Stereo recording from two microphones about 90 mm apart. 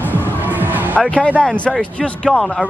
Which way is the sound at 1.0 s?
15° left (ahead or behind).